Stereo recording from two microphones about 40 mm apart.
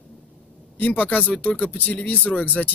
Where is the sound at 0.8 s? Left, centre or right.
Left.